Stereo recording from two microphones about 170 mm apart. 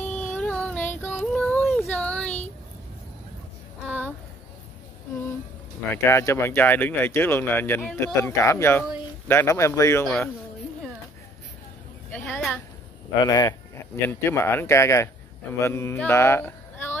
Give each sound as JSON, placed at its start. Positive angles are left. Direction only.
{"t": 0.0, "sound": "a sound", "side_deg": 10}
{"t": 6.0, "sound": "speech", "side_deg": 15}
{"t": 10.0, "sound": "speech", "side_deg": 5}
{"t": 12.1, "sound": "speech", "side_deg": 5}
{"t": 13.2, "sound": "speech", "side_deg": 25}
{"t": 14.0, "sound": "speech", "side_deg": 15}
{"t": 15.6, "sound": "mantra", "side_deg": 15}